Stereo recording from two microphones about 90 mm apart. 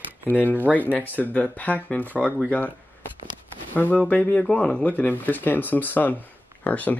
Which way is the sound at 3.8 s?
20° left (ahead or behind).